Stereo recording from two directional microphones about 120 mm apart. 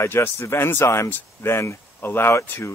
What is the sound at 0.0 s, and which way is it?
Speech, 20° left (ahead or behind).